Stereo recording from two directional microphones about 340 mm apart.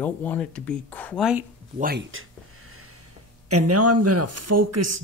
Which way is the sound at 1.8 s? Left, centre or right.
Right.